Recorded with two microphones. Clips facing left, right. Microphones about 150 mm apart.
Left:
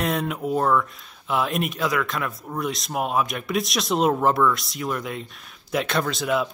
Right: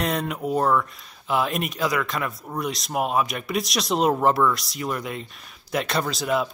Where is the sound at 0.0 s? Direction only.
Centre (ahead or behind).